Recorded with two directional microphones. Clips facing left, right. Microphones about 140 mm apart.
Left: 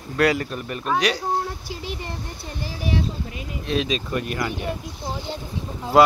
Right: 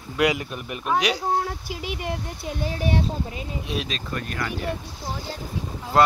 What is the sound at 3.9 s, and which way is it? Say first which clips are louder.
Speech: left 6 dB; 10° left (ahead or behind).